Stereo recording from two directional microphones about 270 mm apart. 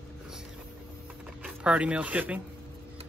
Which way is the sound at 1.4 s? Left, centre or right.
Centre.